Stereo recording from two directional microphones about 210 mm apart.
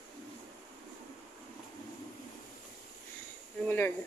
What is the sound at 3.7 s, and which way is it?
Speech, 10° left (ahead or behind).